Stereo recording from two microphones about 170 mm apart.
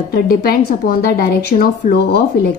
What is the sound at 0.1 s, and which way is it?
A woman's voice, 60° left (ahead or behind).